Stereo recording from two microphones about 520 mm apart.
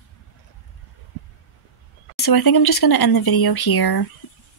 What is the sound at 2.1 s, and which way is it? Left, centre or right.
Speech, left.